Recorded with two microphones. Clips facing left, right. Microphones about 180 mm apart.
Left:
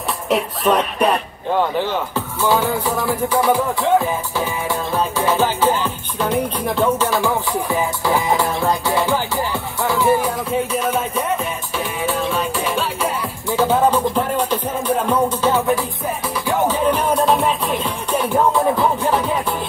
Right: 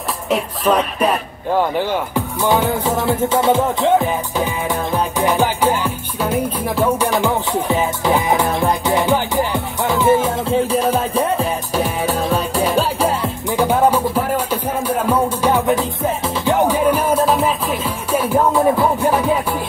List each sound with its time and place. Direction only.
0.3 s music: centre (ahead or behind)
2.1 s speech: 20° right (ahead or behind)
3.0 s music: 25° right (ahead or behind)
13.5 s music: 15° right (ahead or behind)